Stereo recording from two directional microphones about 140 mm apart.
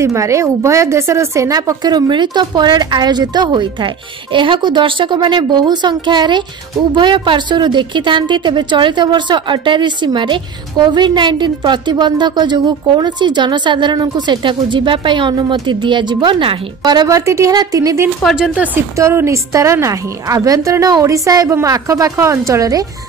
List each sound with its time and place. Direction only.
0.0 s a woman's voice: 20° right (ahead or behind)
18.2 s speech: 5° right (ahead or behind)
18.9 s a woman's voice: 20° right (ahead or behind)